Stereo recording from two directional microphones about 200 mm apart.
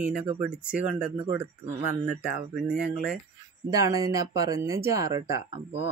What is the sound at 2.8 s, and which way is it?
Speech, 5° right (ahead or behind).